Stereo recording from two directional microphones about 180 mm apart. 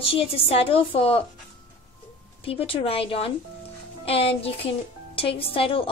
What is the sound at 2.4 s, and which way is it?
A child's voice, 30° left (ahead or behind).